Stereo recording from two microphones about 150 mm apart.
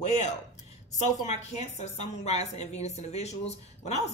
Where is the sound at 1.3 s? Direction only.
50° left (ahead or behind).